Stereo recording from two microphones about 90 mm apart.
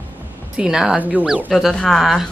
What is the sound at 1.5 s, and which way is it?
Speech, centre (ahead or behind).